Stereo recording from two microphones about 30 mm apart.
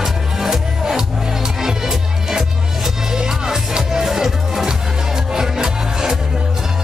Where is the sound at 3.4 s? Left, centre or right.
Right.